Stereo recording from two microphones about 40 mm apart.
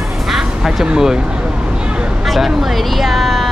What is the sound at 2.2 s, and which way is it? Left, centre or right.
Speech, centre.